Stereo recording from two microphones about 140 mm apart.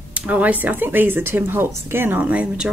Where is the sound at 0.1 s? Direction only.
10° right (ahead or behind).